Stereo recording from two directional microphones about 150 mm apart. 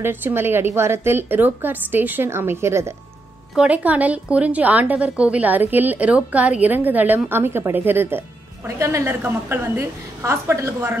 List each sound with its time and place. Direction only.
0.0 s a woman's voice: 15° right (ahead or behind)